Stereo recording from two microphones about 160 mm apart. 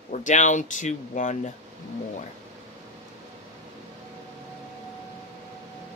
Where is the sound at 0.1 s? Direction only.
50° left (ahead or behind).